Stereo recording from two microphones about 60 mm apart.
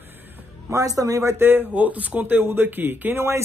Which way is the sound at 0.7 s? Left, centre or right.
Right.